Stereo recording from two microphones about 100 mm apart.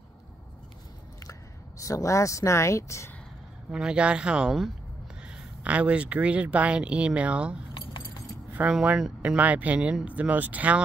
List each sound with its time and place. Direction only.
1.8 s speech: 35° left (ahead or behind)
3.7 s speech: 10° right (ahead or behind)
8.5 s speech: 10° right (ahead or behind)